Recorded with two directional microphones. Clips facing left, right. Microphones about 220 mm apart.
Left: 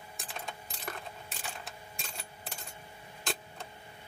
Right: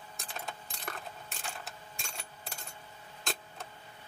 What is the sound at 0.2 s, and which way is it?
Keys jangling, centre (ahead or behind).